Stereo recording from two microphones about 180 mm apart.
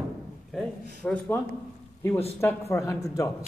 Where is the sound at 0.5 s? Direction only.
5° left (ahead or behind).